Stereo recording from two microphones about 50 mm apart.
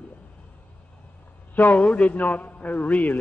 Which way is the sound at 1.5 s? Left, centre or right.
Left.